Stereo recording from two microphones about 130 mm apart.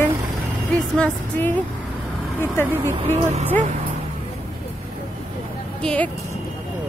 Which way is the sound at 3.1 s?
60° right (ahead or behind).